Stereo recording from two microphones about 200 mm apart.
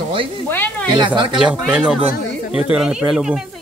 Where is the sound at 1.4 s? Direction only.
5° right (ahead or behind).